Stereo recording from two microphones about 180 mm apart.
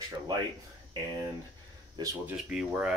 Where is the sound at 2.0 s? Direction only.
25° right (ahead or behind).